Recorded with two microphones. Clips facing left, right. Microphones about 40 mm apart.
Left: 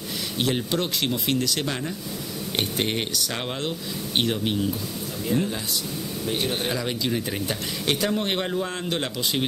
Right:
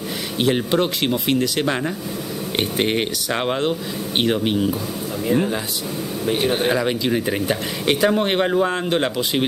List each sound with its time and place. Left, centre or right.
0.4 s speech: centre
2.8 s speech: right